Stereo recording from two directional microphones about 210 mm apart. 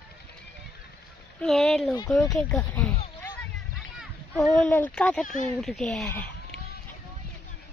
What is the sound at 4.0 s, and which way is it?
Children playing, centre (ahead or behind).